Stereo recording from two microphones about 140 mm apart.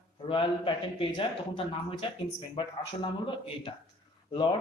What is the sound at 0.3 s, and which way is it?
Speech, 35° left (ahead or behind).